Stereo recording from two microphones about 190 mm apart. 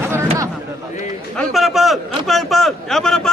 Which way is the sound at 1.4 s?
Centre (ahead or behind).